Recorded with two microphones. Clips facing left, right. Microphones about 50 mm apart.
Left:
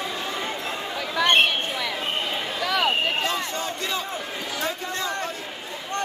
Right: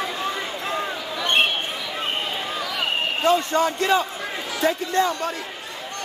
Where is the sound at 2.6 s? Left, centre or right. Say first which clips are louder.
Left 7 dB; left.